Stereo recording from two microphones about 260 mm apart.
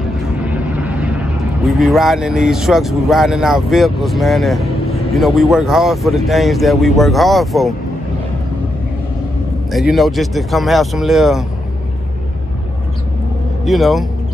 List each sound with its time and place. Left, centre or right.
0.5 s speech: centre
4.8 s vehicle: left
5.1 s speech: centre
9.7 s speech: centre
13.7 s speech: centre